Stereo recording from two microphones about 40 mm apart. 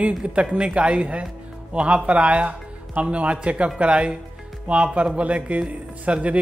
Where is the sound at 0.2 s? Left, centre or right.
Right.